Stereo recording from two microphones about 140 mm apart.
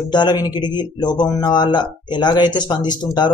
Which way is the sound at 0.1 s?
30° left (ahead or behind).